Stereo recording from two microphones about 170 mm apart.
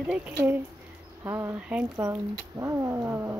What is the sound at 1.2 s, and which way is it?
Cat, 10° right (ahead or behind).